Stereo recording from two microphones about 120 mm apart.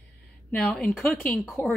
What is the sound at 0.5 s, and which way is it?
Speech, 5° left (ahead or behind).